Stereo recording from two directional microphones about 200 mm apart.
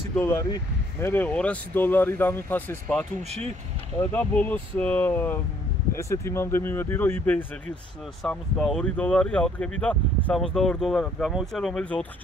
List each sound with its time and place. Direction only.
0.1 s speech: 15° left (ahead or behind)